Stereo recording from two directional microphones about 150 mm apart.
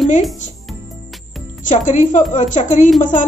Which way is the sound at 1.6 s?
55° left (ahead or behind).